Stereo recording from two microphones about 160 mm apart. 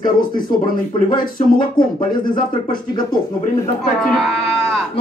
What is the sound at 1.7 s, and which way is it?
Speech, 30° left (ahead or behind).